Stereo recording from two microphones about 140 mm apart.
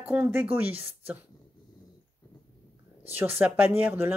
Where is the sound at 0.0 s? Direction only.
10° right (ahead or behind).